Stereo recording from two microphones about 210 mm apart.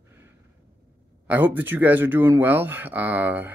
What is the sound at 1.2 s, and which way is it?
Speech, 10° right (ahead or behind).